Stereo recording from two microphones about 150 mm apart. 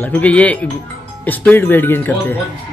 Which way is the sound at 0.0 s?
10° left (ahead or behind).